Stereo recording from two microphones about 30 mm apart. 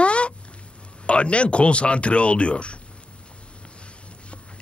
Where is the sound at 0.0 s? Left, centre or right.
Left.